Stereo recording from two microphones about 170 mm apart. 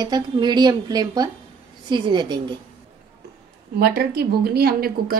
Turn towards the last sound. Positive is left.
turn(degrees=-60)  # may be behind; listen again after turning